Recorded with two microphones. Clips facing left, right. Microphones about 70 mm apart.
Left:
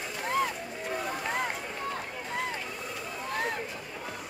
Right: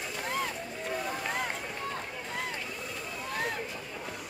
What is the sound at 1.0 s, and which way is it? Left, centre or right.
Run, centre.